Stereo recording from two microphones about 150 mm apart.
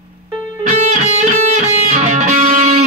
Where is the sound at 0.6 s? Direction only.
50° right (ahead or behind).